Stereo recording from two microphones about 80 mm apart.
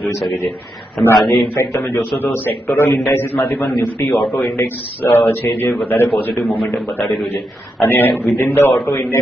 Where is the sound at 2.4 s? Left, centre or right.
Left.